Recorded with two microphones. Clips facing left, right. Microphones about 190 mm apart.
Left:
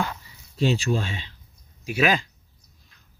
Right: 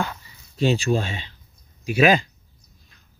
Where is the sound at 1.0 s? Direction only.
Centre (ahead or behind).